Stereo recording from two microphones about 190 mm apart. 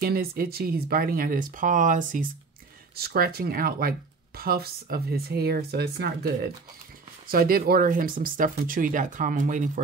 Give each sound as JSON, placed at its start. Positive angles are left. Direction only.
{"t": 0.0, "sound": "speech", "side_deg": -50}